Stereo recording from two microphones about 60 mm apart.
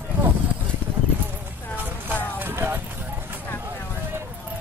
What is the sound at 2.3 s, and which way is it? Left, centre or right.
Music, right.